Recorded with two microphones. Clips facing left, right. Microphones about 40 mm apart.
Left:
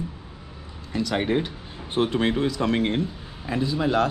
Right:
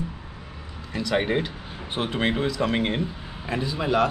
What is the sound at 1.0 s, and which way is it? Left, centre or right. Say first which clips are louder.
Speech: even; right.